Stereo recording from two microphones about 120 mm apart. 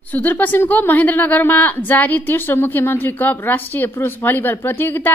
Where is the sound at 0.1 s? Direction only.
15° left (ahead or behind).